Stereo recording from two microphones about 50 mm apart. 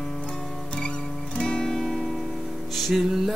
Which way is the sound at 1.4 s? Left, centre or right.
Centre.